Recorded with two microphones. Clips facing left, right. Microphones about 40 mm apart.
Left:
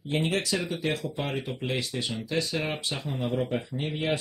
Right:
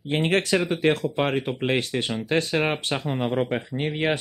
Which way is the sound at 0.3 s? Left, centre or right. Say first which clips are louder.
Right 7 dB; right.